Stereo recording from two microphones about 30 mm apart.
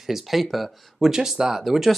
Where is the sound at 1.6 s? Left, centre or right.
Centre.